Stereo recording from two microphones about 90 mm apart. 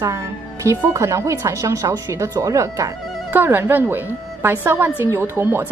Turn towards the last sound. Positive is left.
turn(degrees=-25)  # may be behind; listen again after turning